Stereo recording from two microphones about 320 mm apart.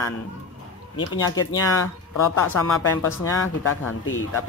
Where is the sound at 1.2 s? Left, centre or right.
Centre.